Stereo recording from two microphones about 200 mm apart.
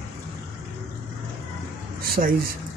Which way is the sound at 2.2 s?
40° right (ahead or behind).